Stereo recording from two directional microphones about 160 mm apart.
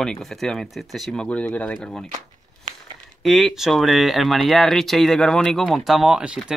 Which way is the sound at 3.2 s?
Centre (ahead or behind).